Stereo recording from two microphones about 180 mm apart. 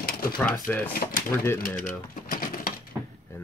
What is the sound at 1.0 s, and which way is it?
Speech, 55° left (ahead or behind).